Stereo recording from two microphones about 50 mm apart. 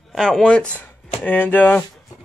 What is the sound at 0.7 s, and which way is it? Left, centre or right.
Speech, left.